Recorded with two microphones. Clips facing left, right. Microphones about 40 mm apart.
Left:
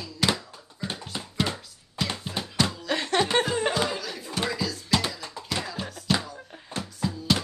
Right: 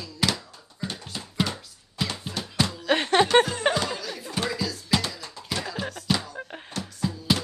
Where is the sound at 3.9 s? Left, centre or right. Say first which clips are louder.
Even; centre.